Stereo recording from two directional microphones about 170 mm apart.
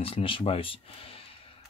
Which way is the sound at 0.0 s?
30° left (ahead or behind).